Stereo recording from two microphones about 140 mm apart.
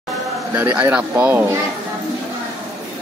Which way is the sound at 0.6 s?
15° right (ahead or behind).